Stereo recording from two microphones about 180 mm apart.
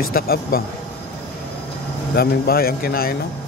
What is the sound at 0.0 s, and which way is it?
Speech, 55° left (ahead or behind).